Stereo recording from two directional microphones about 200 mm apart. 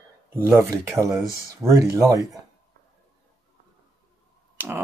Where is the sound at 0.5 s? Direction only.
15° right (ahead or behind).